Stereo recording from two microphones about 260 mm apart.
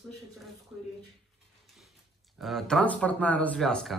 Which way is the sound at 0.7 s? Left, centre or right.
Centre.